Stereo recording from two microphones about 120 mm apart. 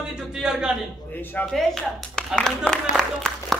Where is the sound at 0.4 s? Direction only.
5° right (ahead or behind).